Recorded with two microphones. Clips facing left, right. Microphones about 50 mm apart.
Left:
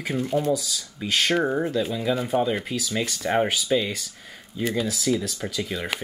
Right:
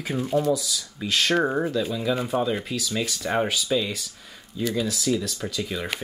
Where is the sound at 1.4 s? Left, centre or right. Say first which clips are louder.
Even; centre.